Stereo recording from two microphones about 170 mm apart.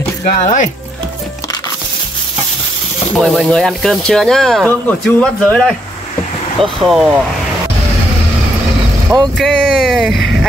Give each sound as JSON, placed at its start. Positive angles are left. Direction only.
{"t": 0.2, "sound": "speech", "side_deg": 45}
{"t": 3.2, "sound": "speech", "side_deg": 0}
{"t": 6.9, "sound": "speech", "side_deg": -5}
{"t": 9.4, "sound": "speech", "side_deg": 0}